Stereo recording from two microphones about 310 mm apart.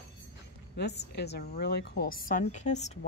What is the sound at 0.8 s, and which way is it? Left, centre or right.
A woman's voice, left.